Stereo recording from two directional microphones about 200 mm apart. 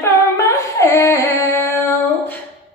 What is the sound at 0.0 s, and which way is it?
Female singing, 15° left (ahead or behind).